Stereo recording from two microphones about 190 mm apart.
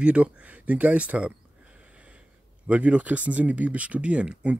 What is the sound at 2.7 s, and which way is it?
Speech, 5° right (ahead or behind).